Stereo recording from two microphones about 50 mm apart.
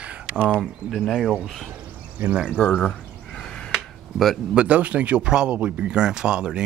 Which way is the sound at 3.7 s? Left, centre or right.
Centre.